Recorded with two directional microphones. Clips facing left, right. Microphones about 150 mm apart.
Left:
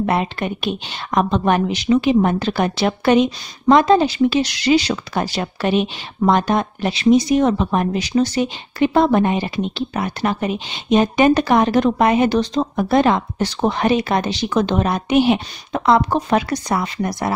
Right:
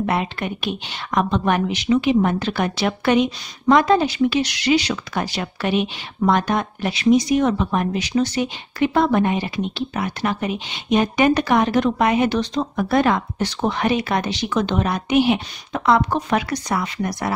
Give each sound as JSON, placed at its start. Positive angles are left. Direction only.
{"t": 0.0, "sound": "a woman's voice", "side_deg": 35}